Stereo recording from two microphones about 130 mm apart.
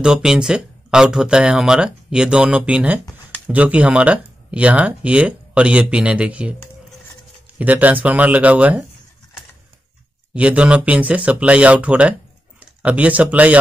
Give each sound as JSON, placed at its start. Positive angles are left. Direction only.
{"t": 0.0, "sound": "speech", "side_deg": -5}
{"t": 7.5, "sound": "speech", "side_deg": -10}
{"t": 10.3, "sound": "speech", "side_deg": -10}